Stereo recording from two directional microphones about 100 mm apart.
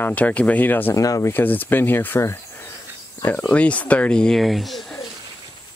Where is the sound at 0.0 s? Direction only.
15° left (ahead or behind).